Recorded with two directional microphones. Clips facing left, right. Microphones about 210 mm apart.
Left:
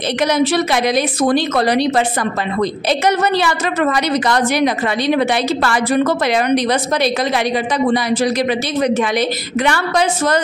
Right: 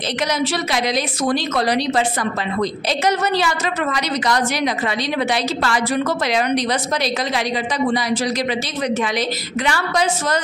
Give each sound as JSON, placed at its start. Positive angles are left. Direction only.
{"t": 0.2, "sound": "a woman's voice", "side_deg": 60}